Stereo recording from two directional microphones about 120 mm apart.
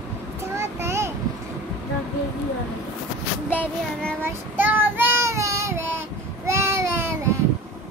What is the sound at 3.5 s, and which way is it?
Child singing, 10° left (ahead or behind).